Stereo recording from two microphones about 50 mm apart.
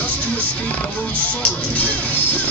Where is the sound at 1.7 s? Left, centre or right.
Left.